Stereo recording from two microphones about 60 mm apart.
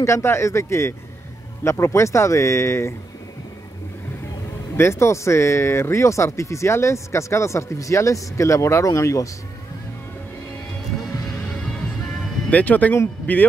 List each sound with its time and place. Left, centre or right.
0.0 s speech: left
4.7 s speech: left
12.4 s speech: left